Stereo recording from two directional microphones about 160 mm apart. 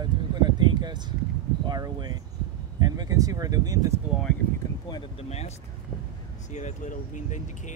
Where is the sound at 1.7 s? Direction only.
25° right (ahead or behind).